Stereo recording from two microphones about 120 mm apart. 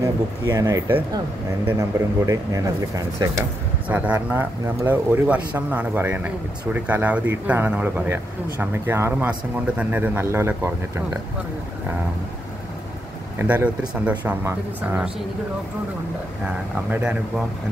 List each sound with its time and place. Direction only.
0.0 s speech: 35° right (ahead or behind)
3.9 s speech: 15° right (ahead or behind)
13.4 s speech: 20° right (ahead or behind)
16.9 s speech: 15° right (ahead or behind)